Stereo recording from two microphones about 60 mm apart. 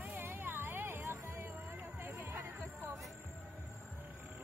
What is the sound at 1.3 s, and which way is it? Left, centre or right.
Music, right.